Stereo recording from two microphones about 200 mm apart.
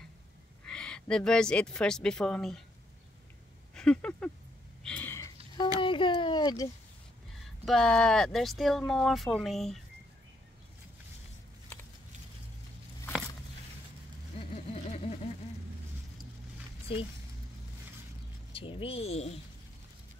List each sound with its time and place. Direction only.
0.7 s speech: 5° left (ahead or behind)
3.7 s speech: 5° left (ahead or behind)
4.8 s sniff: 10° left (ahead or behind)
5.8 s speech: 25° left (ahead or behind)
7.6 s speech: centre (ahead or behind)
14.5 s a sound: 30° left (ahead or behind)
18.5 s speech: 25° left (ahead or behind)